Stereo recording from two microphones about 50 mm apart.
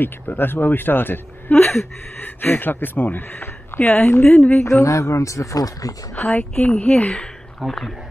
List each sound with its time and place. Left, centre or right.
0.0 s speech: left
4.3 s speech: centre
4.6 s speech: left
6.5 s speech: left
7.6 s speech: centre